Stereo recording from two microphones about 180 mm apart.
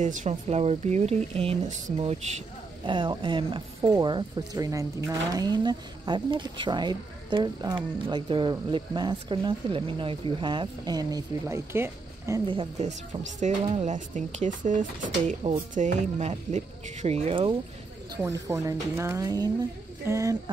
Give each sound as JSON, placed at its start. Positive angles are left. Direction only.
{"t": 0.0, "sound": "speech", "side_deg": -45}
{"t": 12.4, "sound": "speech", "side_deg": -30}
{"t": 12.8, "sound": "speech", "side_deg": -40}
{"t": 18.5, "sound": "a woman's voice", "side_deg": -15}